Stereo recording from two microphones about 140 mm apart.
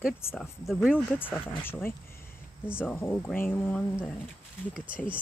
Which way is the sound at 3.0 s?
15° left (ahead or behind).